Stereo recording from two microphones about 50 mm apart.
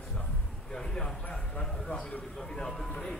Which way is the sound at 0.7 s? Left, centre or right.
Centre.